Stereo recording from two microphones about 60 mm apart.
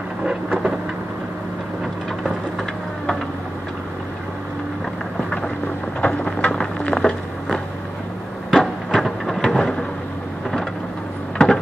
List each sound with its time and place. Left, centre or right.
0.2 s thunder: centre
5.9 s a sound: centre
11.3 s vehicle: centre